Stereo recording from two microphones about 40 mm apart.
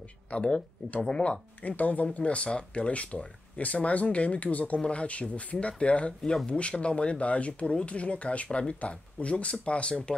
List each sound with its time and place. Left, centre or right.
0.3 s speech: left
1.6 s speech: left
2.1 s speech: left